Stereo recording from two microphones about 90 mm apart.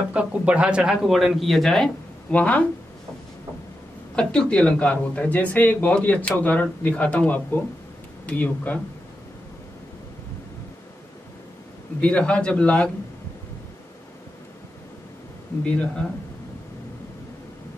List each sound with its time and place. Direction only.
0.1 s speech: 15° right (ahead or behind)
1.0 s speech: centre (ahead or behind)
4.1 s speech: 10° left (ahead or behind)
12.0 s speech: 15° left (ahead or behind)
15.6 s speech: 15° left (ahead or behind)